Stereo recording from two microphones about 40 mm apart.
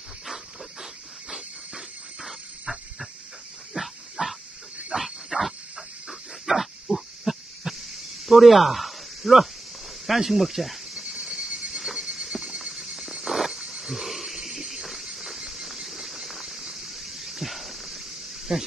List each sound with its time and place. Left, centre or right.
3.7 s dog: centre
8.3 s speech: centre
11.0 s a sound: centre
18.5 s speech: centre